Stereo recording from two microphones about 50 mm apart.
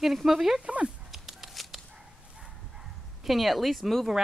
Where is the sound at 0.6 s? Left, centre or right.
Right.